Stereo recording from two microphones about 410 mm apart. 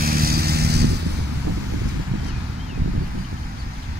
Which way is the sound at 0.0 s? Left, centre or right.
Right.